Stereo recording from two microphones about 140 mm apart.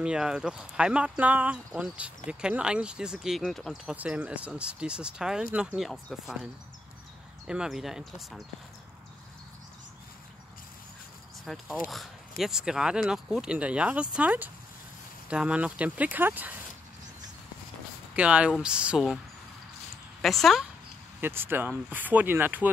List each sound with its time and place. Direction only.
0.0 s speech: 5° right (ahead or behind)
7.4 s speech: 5° right (ahead or behind)
11.4 s speech: centre (ahead or behind)
18.1 s speech: 10° right (ahead or behind)
20.2 s speech: centre (ahead or behind)
21.2 s speech: 15° right (ahead or behind)